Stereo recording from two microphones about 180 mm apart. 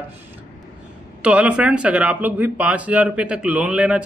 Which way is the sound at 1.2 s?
5° right (ahead or behind).